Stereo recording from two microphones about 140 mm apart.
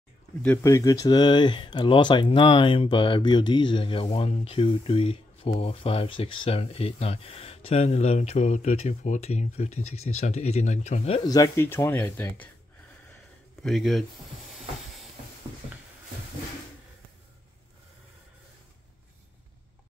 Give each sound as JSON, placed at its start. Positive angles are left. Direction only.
{"t": 0.4, "sound": "speech", "side_deg": 10}
{"t": 0.7, "sound": "speech", "side_deg": 20}
{"t": 11.1, "sound": "speech", "side_deg": 25}
{"t": 13.6, "sound": "speech", "side_deg": 0}